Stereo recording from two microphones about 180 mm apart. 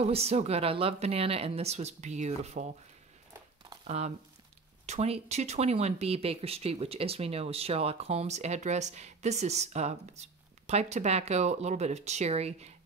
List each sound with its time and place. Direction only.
0.0 s speech: 35° right (ahead or behind)
3.8 s speech: 35° right (ahead or behind)